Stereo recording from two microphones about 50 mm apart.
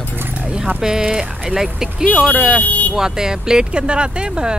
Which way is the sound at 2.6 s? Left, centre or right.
Left.